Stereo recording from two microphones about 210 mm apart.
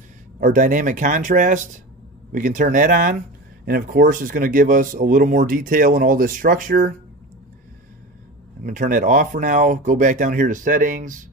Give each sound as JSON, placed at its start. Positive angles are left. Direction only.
{"t": 0.4, "sound": "speech", "side_deg": -40}
{"t": 8.6, "sound": "speech", "side_deg": -40}